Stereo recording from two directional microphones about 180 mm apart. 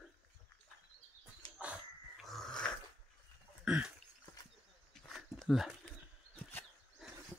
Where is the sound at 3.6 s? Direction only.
5° right (ahead or behind).